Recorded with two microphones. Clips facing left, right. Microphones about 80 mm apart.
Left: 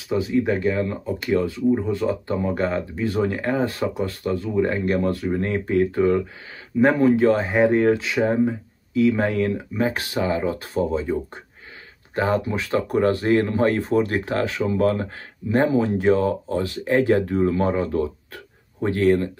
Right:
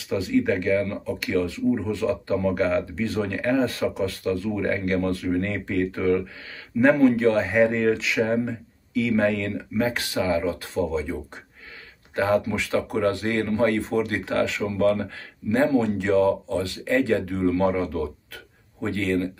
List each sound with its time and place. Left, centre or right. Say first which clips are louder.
0.1 s speech: left 1 dB; left
12.2 s speech: even; left